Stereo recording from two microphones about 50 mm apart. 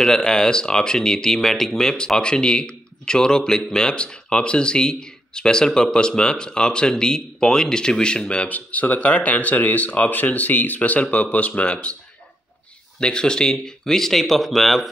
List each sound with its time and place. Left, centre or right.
0.0 s speech: centre
13.0 s speech: centre